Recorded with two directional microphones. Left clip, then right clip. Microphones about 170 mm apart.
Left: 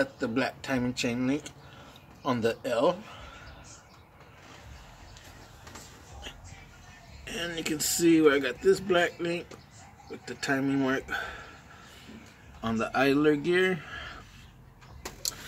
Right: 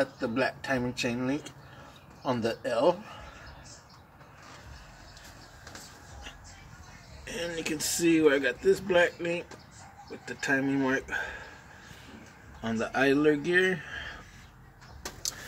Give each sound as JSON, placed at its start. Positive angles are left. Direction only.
{"t": 0.2, "sound": "speech", "side_deg": 30}
{"t": 7.5, "sound": "speech", "side_deg": 25}
{"t": 12.6, "sound": "speech", "side_deg": 25}